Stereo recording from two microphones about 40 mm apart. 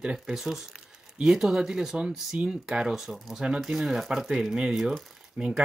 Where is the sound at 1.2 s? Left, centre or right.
Centre.